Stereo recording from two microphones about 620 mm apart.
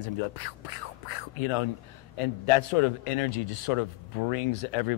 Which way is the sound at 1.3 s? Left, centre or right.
Left.